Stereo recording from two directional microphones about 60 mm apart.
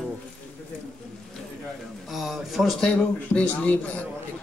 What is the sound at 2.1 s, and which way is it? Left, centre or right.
Speech, centre.